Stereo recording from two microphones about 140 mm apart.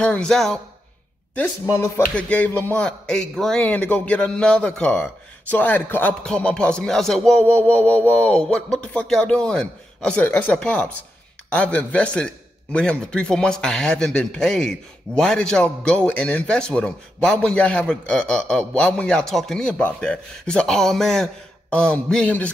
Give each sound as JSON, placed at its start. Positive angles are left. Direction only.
{"t": 0.0, "sound": "speech", "side_deg": 5}
{"t": 1.3, "sound": "speech", "side_deg": 15}